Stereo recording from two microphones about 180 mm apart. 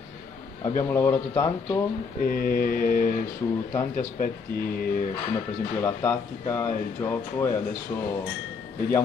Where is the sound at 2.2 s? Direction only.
55° left (ahead or behind).